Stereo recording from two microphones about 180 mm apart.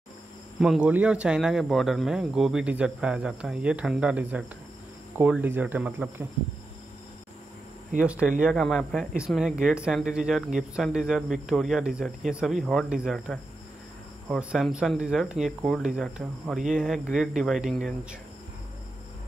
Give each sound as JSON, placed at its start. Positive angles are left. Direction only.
{"t": 0.6, "sound": "speech", "side_deg": -5}
{"t": 8.0, "sound": "speech", "side_deg": -5}